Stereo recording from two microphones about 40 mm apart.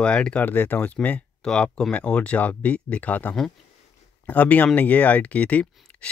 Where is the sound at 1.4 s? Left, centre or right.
Centre.